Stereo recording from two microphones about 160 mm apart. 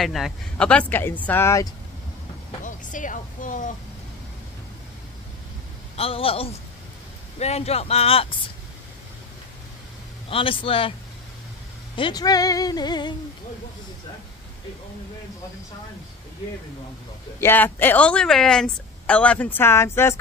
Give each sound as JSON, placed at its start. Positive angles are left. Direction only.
{"t": 0.0, "sound": "a woman's voice", "side_deg": 0}
{"t": 2.6, "sound": "speech", "side_deg": 55}
{"t": 5.9, "sound": "speech", "side_deg": 35}
{"t": 10.3, "sound": "speech", "side_deg": 35}
{"t": 11.9, "sound": "speech", "side_deg": 30}
{"t": 17.4, "sound": "a woman's voice", "side_deg": 15}